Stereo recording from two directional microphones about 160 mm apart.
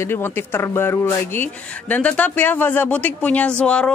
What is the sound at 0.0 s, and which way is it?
Speech, 15° left (ahead or behind).